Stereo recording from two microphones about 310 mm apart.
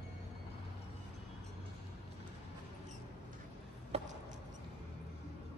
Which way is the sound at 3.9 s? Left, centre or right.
Centre.